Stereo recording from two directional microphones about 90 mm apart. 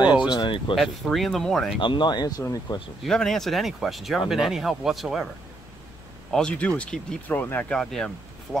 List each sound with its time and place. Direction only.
0.3 s speech: 60° left (ahead or behind)
0.7 s speech: centre (ahead or behind)
1.8 s speech: 65° left (ahead or behind); by 2.8 s 40° left (ahead or behind)
3.0 s speech: 5° left (ahead or behind)
6.3 s speech: 10° left (ahead or behind)
7.7 s speech: 5° left (ahead or behind)